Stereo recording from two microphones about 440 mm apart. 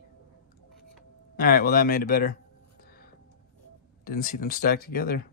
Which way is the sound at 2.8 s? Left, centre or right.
Centre.